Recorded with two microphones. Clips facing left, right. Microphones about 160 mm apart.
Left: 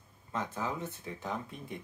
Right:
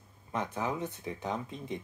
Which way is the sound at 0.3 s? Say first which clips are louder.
Right 2 dB; 20° right (ahead or behind).